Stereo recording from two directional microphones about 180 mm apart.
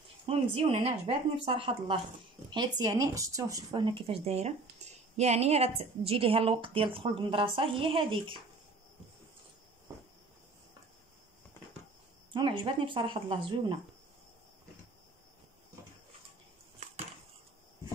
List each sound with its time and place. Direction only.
0.3 s speech: 35° right (ahead or behind)
12.4 s speech: 25° right (ahead or behind)